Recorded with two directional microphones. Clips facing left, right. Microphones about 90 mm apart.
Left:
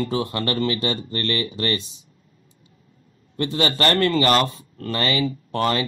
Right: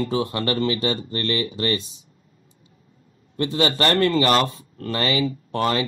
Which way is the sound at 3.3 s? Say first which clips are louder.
Right 1 dB; 20° right (ahead or behind).